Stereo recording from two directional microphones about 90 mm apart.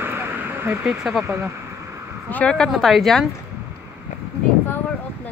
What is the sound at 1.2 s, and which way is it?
Speech, 30° right (ahead or behind).